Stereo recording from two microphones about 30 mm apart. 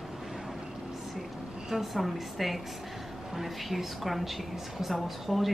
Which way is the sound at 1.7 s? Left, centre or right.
Centre.